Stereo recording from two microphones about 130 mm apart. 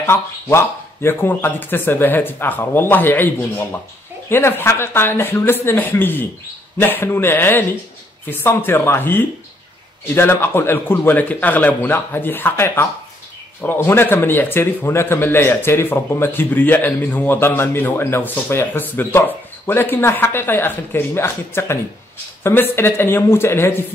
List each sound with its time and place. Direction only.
0.0 s a man's voice: 20° left (ahead or behind)